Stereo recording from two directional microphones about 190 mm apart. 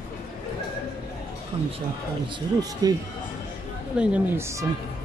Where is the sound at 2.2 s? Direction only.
20° right (ahead or behind).